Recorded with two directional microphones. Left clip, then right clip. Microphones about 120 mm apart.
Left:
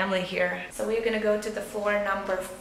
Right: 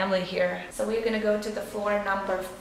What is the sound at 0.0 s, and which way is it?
A woman's voice, 5° left (ahead or behind).